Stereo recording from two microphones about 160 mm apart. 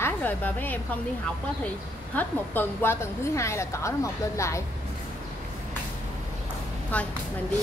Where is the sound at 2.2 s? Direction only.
15° left (ahead or behind).